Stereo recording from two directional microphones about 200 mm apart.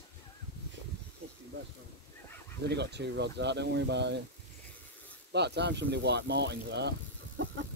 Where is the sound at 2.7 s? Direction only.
55° right (ahead or behind).